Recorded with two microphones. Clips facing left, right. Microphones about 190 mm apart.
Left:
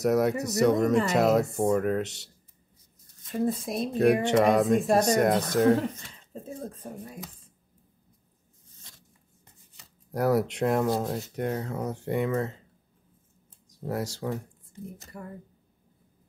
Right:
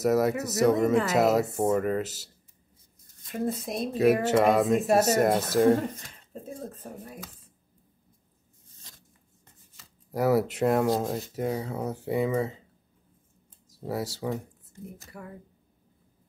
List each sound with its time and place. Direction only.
0.0 s speech: centre (ahead or behind)
10.1 s speech: centre (ahead or behind)
13.7 s speech: 5° right (ahead or behind)